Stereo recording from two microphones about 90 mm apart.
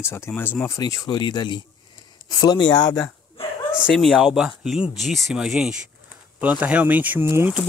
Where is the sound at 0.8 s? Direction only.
45° left (ahead or behind).